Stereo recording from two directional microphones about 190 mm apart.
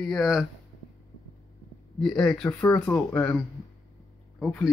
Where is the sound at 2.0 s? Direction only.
5° left (ahead or behind).